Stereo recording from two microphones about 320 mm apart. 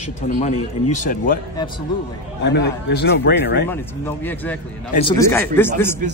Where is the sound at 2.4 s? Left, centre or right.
Left.